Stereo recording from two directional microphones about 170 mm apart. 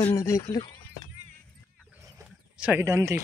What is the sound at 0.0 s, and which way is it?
Speech, 15° left (ahead or behind).